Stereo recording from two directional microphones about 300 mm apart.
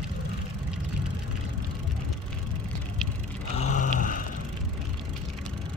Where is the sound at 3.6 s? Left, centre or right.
Left.